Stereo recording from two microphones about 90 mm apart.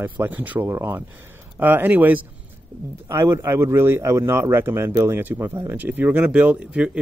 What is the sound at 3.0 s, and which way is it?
Speech, 30° right (ahead or behind).